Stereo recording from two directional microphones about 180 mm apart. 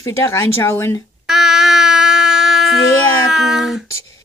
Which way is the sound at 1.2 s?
Centre (ahead or behind).